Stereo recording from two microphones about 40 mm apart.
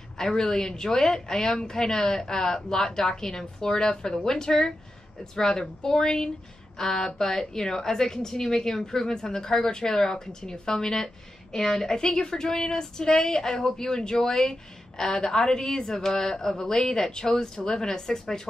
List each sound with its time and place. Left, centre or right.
0.2 s a woman's voice: centre